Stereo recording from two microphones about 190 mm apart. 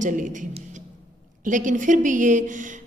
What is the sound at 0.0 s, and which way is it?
A woman's voice, 45° right (ahead or behind).